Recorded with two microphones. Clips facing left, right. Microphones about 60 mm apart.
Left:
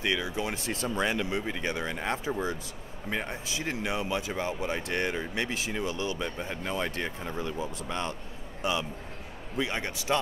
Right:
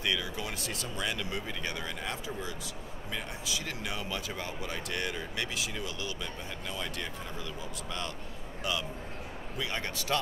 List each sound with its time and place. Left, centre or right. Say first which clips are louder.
0.0 s speech: left 4 dB; left